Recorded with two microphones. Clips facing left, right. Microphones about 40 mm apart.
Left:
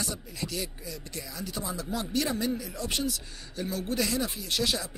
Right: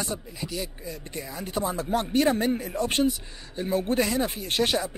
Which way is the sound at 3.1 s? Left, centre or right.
Right.